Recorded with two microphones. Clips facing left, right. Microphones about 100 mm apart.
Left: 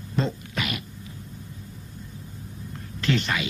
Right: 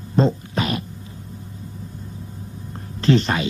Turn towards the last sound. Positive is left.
turn(degrees=-35)  # may be behind; listen again after turning